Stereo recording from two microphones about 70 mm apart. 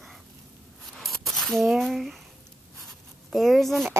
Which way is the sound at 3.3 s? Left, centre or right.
Centre.